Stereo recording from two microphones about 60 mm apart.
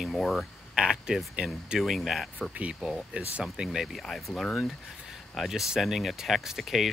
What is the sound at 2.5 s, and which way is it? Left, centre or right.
Speech, right.